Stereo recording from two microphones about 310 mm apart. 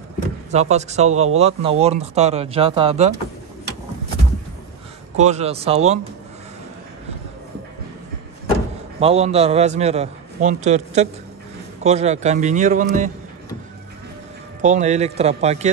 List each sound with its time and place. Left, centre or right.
0.5 s a man's voice: right
5.1 s a man's voice: right
9.0 s a man's voice: centre
14.6 s a man's voice: right